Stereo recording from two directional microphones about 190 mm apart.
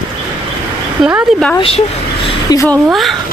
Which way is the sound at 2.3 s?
20° left (ahead or behind).